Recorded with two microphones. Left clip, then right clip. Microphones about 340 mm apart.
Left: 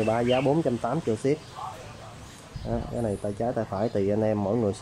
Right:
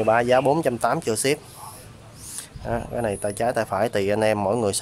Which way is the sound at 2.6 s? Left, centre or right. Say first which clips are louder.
Right 5 dB; right.